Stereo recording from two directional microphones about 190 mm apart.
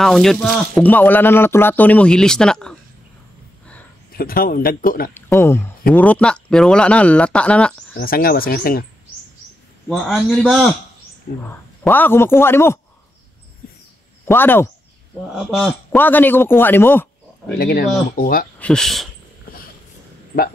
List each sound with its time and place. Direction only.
0.0 s speech: centre (ahead or behind)
4.1 s speech: 50° left (ahead or behind)
5.1 s speech: 10° left (ahead or behind)
8.0 s speech: 50° left (ahead or behind)
9.8 s speech: centre (ahead or behind)
11.8 s speech: 10° left (ahead or behind)
14.2 s a man's voice: 10° left (ahead or behind)
17.6 s speech: 50° left (ahead or behind)
18.6 s speech: 5° left (ahead or behind)